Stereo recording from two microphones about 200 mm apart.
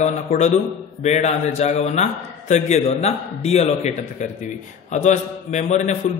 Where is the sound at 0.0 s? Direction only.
35° left (ahead or behind).